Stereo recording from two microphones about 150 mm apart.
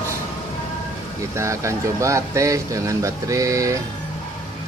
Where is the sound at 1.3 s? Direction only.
20° right (ahead or behind).